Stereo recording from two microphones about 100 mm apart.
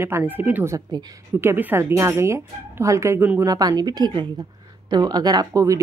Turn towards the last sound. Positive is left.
turn(degrees=-35)  # may be behind; listen again after turning